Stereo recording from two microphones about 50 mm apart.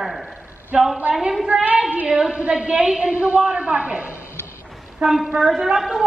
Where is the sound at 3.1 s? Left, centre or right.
Right.